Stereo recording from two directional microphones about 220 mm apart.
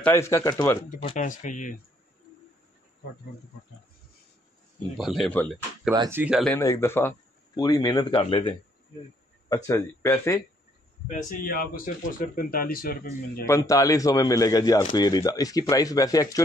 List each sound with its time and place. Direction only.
0.0 s a man's voice: 10° left (ahead or behind)
1.4 s a man's voice: 35° left (ahead or behind)
4.9 s speech: centre (ahead or behind)
5.9 s speech: 10° right (ahead or behind)
6.6 s a man's voice: 15° left (ahead or behind)
11.1 s a man's voice: 35° left (ahead or behind)
13.5 s a man's voice: 15° left (ahead or behind)